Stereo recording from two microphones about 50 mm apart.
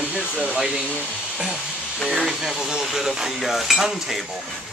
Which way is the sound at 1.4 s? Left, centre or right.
Centre.